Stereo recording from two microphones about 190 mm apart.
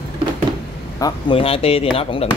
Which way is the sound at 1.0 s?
30° left (ahead or behind).